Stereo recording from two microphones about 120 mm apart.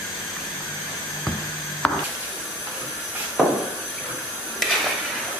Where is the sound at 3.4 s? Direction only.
Centre (ahead or behind).